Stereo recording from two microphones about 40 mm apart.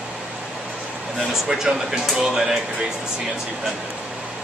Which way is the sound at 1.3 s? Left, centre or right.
Centre.